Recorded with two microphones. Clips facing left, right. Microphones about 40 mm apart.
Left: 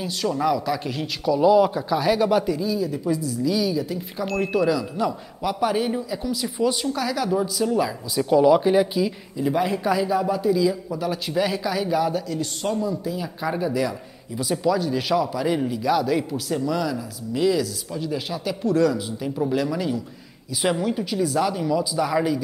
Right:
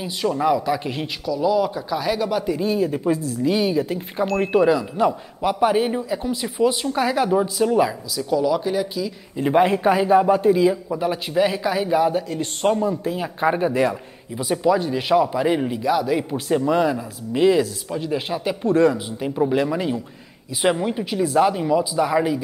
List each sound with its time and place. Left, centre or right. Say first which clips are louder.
0.0 s a man's voice: right 2 dB; centre
1.2 s speech: left 3 dB; centre
2.5 s a man's voice: right 3 dB; right
6.6 s speech: right 3 dB; centre
7.0 s a man's voice: right 8 dB; right
8.3 s speech: left 4 dB; centre
9.4 s speech: right 5 dB; right
10.9 s a man's voice: right 3 dB; right
14.3 s a man's voice: right 3 dB; right
15.8 s speech: right 1 dB; centre
16.3 s a man's voice: right 5 dB; right